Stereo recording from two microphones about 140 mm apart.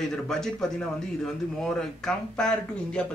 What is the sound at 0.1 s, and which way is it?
Speech, 5° left (ahead or behind).